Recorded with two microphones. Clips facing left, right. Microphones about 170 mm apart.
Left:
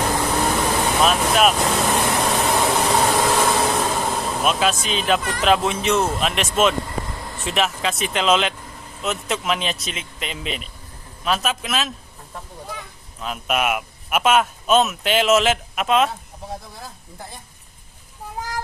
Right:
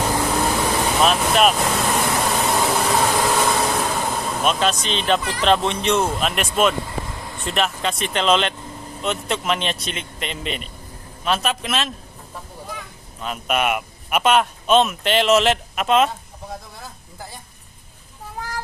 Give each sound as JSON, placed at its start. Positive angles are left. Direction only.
{"t": 0.1, "sound": "vehicle", "side_deg": -5}
{"t": 9.0, "sound": "speech", "side_deg": 0}
{"t": 13.2, "sound": "speech", "side_deg": 0}